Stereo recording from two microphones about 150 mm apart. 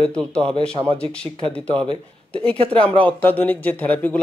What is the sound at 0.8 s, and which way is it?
Speech, 10° left (ahead or behind).